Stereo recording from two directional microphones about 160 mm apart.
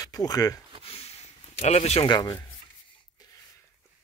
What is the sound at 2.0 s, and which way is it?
Speech, 25° left (ahead or behind).